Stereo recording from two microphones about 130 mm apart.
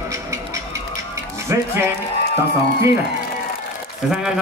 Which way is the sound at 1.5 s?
20° right (ahead or behind).